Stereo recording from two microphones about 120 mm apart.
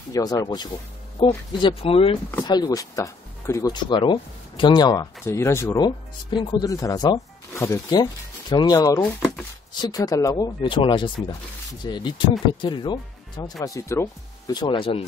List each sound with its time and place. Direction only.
0.1 s speech: 30° left (ahead or behind); by 2.1 s 50° left (ahead or behind)
2.4 s speech: 35° left (ahead or behind)
3.7 s speech: 45° left (ahead or behind)
5.2 s speech: 25° left (ahead or behind)
5.8 s speech: 40° left (ahead or behind)
10.6 s speech: 45° left (ahead or behind); by 14.0 s 25° left (ahead or behind)
14.5 s speech: 40° left (ahead or behind)